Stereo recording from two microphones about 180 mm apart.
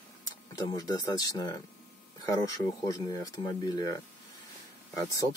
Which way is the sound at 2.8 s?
20° left (ahead or behind).